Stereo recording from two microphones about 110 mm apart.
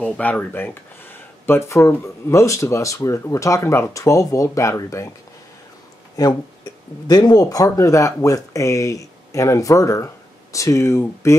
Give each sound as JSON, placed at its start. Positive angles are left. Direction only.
{"t": 0.0, "sound": "speech", "side_deg": 15}
{"t": 7.1, "sound": "speech", "side_deg": 35}